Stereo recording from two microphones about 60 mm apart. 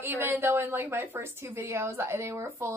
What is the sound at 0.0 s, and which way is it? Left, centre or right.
A woman's voice, right.